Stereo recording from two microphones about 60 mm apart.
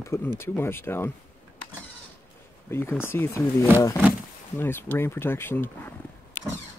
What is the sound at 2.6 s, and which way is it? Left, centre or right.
Speech, left.